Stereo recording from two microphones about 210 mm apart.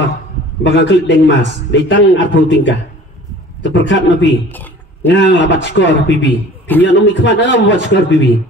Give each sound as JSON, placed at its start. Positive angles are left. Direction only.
{"t": 0.7, "sound": "a man's voice", "side_deg": 55}